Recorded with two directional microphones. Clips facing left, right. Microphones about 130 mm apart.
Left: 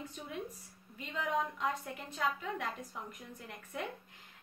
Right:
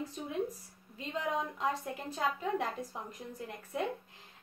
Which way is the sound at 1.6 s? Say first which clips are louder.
Right 2 dB; 30° right (ahead or behind).